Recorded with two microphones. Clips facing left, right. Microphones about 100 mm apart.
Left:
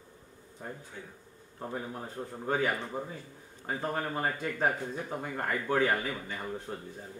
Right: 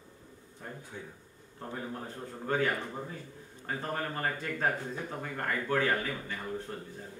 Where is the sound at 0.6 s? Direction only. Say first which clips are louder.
Left 1 dB; 15° left (ahead or behind).